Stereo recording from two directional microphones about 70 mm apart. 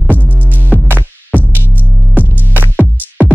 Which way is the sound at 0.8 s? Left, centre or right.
Right.